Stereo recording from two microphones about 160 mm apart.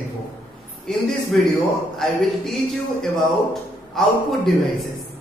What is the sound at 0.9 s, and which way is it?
Speech, centre (ahead or behind).